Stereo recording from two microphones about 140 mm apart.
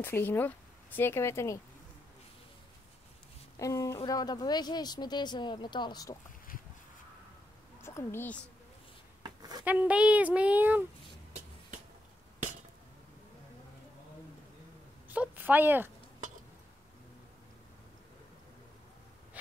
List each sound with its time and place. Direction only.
0.0 s speech: 15° left (ahead or behind)
3.5 s a woman's voice: 25° left (ahead or behind)
7.8 s a child's voice: 20° left (ahead or behind)
9.2 s a sound: 30° right (ahead or behind)
9.7 s speech: 10° right (ahead or behind)
15.0 s speech: 15° right (ahead or behind)